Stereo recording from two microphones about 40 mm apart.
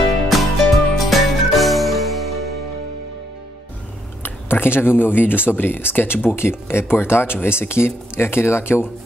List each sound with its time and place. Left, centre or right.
0.3 s music: centre
4.2 s speech: left
7.4 s speech: left